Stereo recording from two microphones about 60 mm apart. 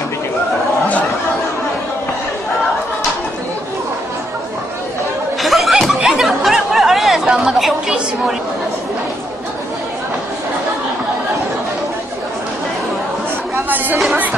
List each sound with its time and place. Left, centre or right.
5.4 s a sound: centre
7.2 s chatter: centre
13.7 s chatter: right